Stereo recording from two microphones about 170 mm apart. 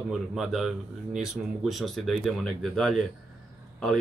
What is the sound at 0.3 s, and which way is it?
Speech, centre (ahead or behind).